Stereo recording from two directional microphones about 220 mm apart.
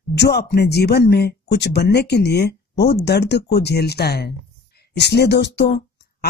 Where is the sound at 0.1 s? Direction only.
45° left (ahead or behind).